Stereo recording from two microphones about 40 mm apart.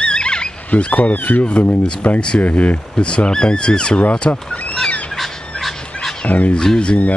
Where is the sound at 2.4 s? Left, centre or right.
Left.